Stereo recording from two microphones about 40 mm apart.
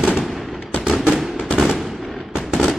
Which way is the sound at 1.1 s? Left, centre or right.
Centre.